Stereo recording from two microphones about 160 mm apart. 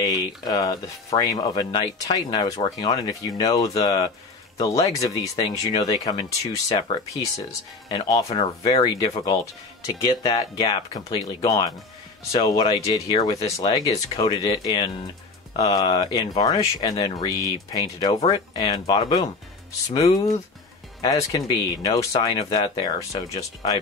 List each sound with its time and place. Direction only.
0.0 s speech: 25° left (ahead or behind)
21.0 s speech: 25° left (ahead or behind)